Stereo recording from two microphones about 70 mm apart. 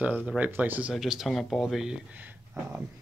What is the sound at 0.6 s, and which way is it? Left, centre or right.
Speech, right.